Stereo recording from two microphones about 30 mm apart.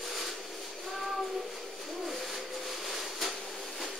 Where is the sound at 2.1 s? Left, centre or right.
Centre.